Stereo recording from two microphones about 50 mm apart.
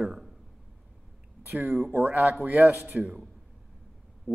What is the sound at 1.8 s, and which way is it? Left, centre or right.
Speech, right.